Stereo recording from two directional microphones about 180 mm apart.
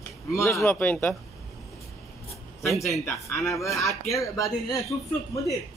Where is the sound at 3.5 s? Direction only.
15° left (ahead or behind).